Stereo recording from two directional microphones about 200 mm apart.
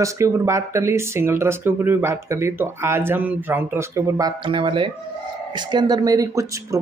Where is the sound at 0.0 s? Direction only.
15° right (ahead or behind).